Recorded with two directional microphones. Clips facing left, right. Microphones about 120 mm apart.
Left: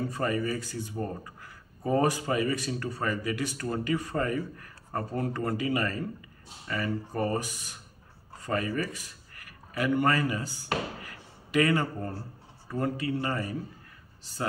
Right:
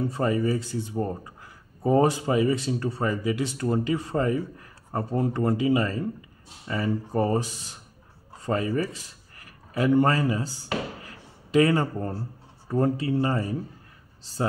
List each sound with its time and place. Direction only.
0.1 s speech: 25° right (ahead or behind)
11.1 s a sound: 30° right (ahead or behind)
12.6 s speech: 30° right (ahead or behind)